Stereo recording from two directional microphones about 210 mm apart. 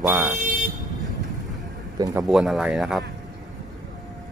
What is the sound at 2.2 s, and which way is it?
Speech, centre (ahead or behind).